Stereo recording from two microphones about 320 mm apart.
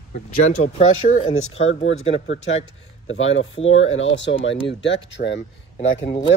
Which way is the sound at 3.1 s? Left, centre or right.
Left.